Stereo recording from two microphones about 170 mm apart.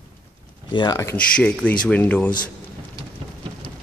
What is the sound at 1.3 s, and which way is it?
Speech, 10° left (ahead or behind).